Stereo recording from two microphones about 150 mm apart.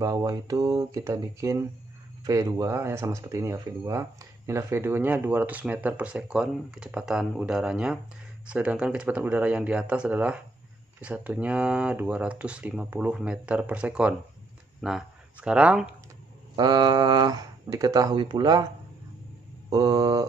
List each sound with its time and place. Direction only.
0.0 s speech: 20° right (ahead or behind); by 15.9 s 5° right (ahead or behind)
16.5 s speech: 25° right (ahead or behind)
19.7 s speech: 25° right (ahead or behind)